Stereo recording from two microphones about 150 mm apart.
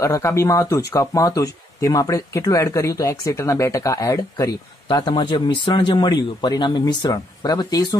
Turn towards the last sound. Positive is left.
turn(degrees=25)  # may be behind; listen again after turning